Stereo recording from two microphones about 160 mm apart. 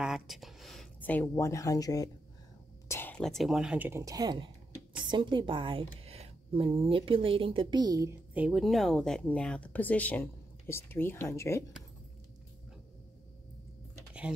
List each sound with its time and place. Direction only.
0.0 s a sound: centre (ahead or behind)
1.0 s speech: 15° left (ahead or behind)
2.9 s speech: 10° left (ahead or behind); by 4.0 s 10° right (ahead or behind)
4.0 s a woman's voice: 25° right (ahead or behind)
8.4 s speech: 5° right (ahead or behind); by 11.6 s 15° left (ahead or behind)